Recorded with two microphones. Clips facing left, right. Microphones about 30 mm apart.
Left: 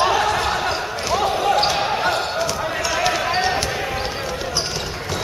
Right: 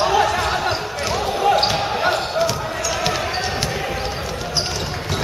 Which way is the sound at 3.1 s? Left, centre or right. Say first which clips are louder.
Left 3 dB; centre.